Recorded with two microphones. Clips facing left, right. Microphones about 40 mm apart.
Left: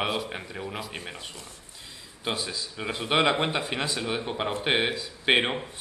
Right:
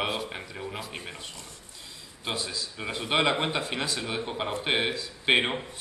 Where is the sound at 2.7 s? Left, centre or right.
Centre.